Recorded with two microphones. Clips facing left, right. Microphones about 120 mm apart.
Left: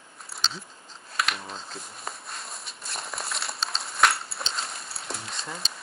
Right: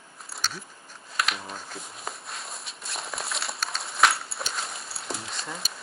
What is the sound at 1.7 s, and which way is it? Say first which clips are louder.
Walk: right 1 dB; centre (ahead or behind).